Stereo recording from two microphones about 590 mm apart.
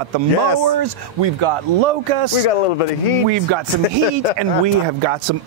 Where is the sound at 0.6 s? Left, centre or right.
Right.